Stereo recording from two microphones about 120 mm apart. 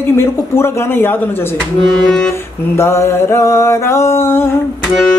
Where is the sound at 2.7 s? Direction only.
20° left (ahead or behind).